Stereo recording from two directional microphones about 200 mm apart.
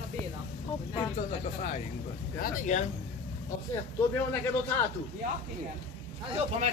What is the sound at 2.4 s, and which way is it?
Speech, 40° left (ahead or behind).